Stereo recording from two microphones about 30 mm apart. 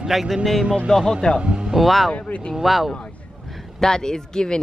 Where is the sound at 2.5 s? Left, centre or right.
Centre.